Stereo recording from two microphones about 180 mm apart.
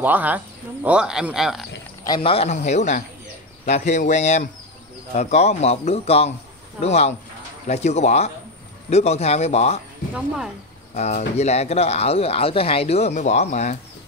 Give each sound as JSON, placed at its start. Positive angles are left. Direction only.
{"t": 0.0, "sound": "speech", "side_deg": -10}
{"t": 2.0, "sound": "speech", "side_deg": 30}
{"t": 10.1, "sound": "speech", "side_deg": -5}
{"t": 11.0, "sound": "speech", "side_deg": 40}